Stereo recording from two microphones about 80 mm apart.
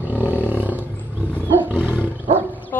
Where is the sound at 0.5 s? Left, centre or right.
Right.